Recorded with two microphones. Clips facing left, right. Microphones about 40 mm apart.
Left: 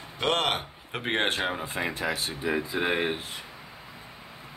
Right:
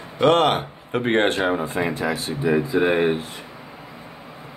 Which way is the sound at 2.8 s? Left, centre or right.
Centre.